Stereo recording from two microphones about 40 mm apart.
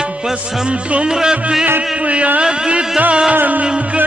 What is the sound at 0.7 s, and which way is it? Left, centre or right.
Speech, right.